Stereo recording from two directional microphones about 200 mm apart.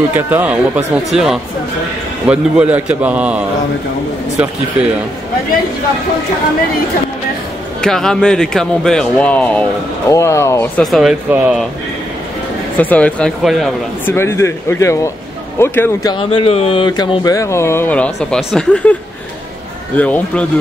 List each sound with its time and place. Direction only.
0.1 s speech: 10° right (ahead or behind)
7.8 s speech: 5° left (ahead or behind)
10.8 s speech: centre (ahead or behind)
12.7 s speech: 10° left (ahead or behind)
14.0 s speech: 10° left (ahead or behind)
20.0 s speech: 5° left (ahead or behind)